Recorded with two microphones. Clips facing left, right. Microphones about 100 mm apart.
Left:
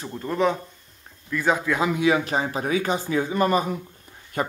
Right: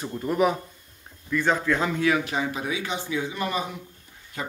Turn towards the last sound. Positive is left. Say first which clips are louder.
# left 7 dB
turn(degrees=55)  # may be behind; listen again after turning